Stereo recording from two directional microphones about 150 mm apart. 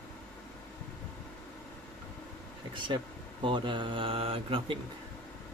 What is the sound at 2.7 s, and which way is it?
Speech, 30° right (ahead or behind).